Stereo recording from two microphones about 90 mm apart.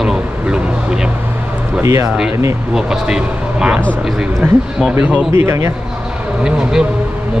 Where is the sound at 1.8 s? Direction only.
35° right (ahead or behind).